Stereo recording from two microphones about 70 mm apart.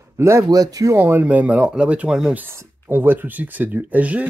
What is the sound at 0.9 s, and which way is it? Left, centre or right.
Speech, right.